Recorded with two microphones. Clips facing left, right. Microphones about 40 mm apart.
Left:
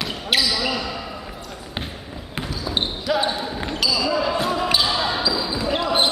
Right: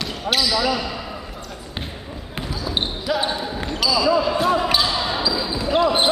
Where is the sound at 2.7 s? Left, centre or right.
Centre.